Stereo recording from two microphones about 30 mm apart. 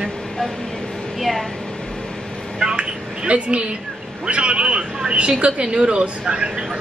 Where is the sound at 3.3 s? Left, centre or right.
Right.